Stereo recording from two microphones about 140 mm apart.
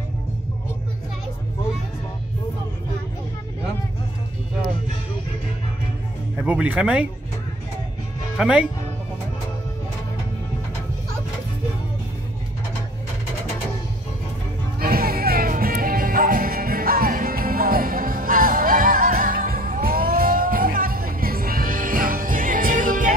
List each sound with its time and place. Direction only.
6.4 s speech: 10° right (ahead or behind)
8.4 s speech: 10° right (ahead or behind)
14.8 s music: 90° right; by 23.1 s 70° right (ahead or behind)